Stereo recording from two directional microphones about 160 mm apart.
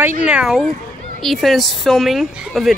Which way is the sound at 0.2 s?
5° right (ahead or behind).